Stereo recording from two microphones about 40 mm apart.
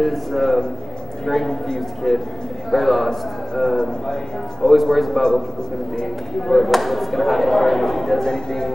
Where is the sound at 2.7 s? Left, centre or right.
Centre.